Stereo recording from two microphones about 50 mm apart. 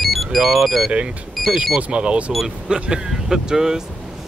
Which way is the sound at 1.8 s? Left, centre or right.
Centre.